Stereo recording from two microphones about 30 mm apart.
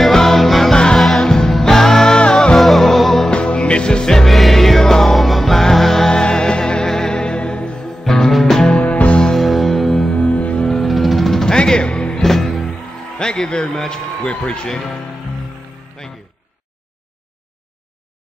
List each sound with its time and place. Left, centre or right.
0.1 s music: centre
2.5 s music: centre
3.3 s music: left
4.0 s music: centre
4.3 s music: centre
5.1 s music: centre
6.0 s music: left
8.0 s music: centre
10.1 s music: left
10.8 s music: centre
11.4 s music: left
12.2 s music: centre
13.2 s a sound: left
14.3 s speech: left